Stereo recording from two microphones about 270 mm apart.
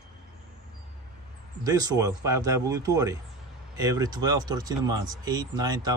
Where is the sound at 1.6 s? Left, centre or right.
Centre.